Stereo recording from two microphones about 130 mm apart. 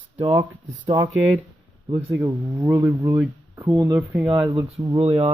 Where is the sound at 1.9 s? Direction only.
25° right (ahead or behind).